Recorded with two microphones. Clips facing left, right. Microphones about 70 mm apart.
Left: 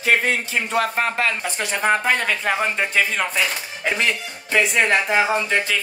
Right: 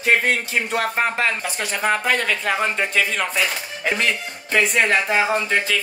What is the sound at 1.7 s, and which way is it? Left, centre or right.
Speech, centre.